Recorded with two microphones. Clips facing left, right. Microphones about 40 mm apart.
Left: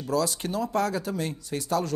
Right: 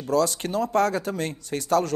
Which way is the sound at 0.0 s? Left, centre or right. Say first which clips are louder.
Right 4 dB; right.